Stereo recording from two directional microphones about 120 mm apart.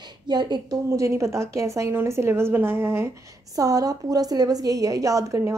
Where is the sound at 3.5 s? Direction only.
30° right (ahead or behind).